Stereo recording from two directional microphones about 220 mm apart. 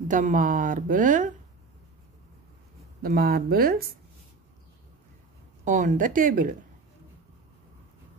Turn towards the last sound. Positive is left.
turn(degrees=-40)  # may be behind; listen again after turning